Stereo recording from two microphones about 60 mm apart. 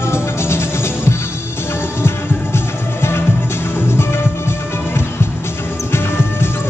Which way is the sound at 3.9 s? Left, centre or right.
Left.